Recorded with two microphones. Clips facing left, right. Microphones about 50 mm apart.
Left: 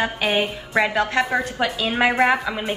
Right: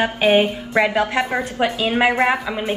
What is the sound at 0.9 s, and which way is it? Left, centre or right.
Speech, centre.